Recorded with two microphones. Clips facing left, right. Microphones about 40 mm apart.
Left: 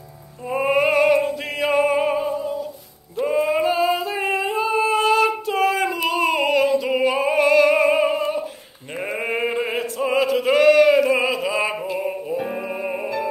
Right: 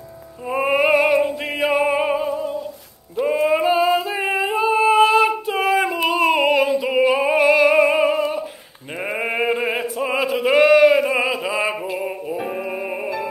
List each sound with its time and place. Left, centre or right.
0.5 s a sound: centre
1.6 s music: centre
3.4 s a sound: centre
3.8 s music: right
4.2 s yodeling: centre
4.6 s singing: centre
9.2 s male singing: centre
11.1 s music: centre